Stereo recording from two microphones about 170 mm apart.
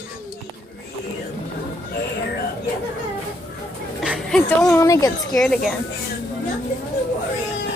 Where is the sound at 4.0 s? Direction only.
5° right (ahead or behind).